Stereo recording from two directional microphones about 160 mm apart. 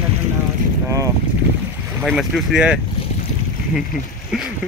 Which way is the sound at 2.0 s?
Centre (ahead or behind).